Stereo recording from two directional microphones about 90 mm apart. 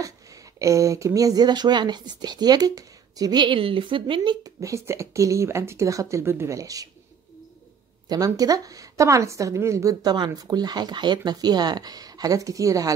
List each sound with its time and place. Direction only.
0.0 s speech: 35° right (ahead or behind)
3.4 s a woman's voice: 80° right
4.4 s speech: 35° right (ahead or behind)
8.1 s speech: 45° right (ahead or behind)